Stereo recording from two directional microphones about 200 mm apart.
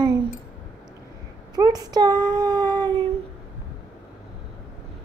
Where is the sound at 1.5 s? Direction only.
20° right (ahead or behind).